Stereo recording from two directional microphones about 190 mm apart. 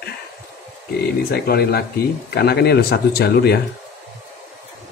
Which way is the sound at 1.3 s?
55° left (ahead or behind).